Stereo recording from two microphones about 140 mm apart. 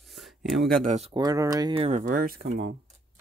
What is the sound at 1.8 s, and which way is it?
Speech, 75° right (ahead or behind).